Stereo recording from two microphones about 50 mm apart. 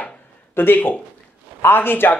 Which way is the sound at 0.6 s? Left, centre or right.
Left.